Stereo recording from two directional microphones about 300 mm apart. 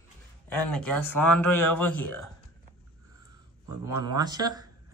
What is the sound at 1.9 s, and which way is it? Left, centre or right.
Speech, left.